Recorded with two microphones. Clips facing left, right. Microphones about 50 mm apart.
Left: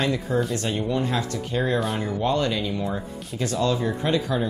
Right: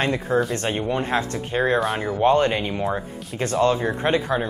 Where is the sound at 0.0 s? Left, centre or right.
Right.